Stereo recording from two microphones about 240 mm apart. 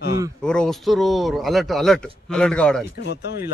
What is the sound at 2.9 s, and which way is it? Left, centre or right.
Speech, left.